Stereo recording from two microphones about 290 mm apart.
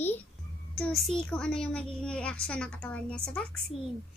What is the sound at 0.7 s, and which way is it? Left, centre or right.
A child's voice, centre.